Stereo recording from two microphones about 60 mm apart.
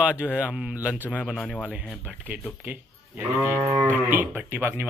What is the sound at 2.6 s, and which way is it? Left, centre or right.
A man's voice, right.